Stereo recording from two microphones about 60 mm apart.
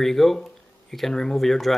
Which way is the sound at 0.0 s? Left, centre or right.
Centre.